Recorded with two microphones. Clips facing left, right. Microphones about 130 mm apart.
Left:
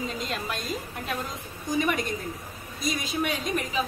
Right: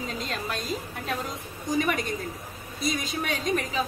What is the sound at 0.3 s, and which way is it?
Speech, centre (ahead or behind).